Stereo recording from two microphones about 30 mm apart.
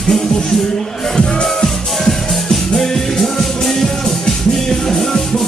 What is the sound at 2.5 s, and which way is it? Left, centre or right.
Music, centre.